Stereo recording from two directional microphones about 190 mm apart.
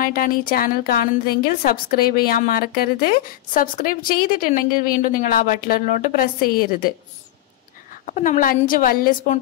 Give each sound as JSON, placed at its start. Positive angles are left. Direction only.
{"t": 0.0, "sound": "a woman's voice", "side_deg": 45}
{"t": 7.9, "sound": "a woman's voice", "side_deg": 45}